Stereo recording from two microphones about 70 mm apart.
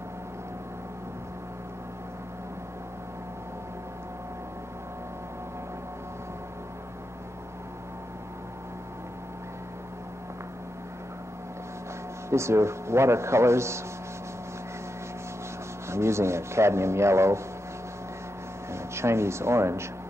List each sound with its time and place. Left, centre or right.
12.3 s a man's voice: right
15.9 s a man's voice: right
18.7 s speech: right